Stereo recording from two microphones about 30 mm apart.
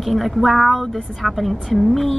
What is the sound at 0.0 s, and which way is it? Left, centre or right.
A woman's voice, centre.